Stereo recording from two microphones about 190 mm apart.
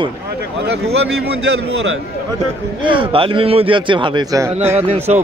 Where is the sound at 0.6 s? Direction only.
60° right (ahead or behind).